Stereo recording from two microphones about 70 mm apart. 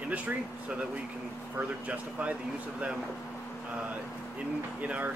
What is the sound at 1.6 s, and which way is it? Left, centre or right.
Speech, centre.